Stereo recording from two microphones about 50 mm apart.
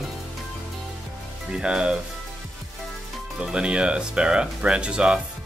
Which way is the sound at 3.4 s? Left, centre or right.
Centre.